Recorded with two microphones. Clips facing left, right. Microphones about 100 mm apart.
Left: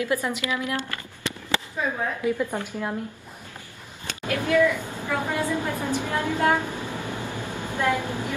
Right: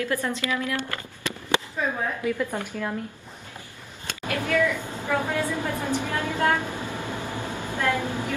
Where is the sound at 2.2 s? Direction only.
20° left (ahead or behind).